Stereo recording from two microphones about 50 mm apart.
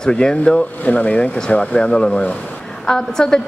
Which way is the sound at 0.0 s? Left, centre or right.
Centre.